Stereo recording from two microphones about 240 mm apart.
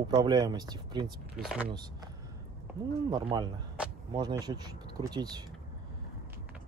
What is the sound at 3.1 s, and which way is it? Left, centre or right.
Speech, centre.